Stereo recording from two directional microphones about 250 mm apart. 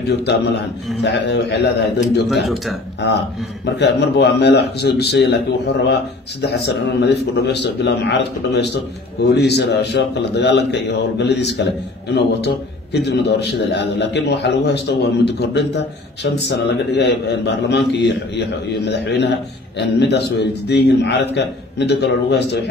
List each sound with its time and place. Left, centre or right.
0.1 s a man's voice: left
2.4 s speech: centre
3.6 s a man's voice: left